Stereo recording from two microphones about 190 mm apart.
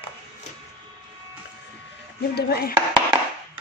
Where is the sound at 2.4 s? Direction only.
55° left (ahead or behind).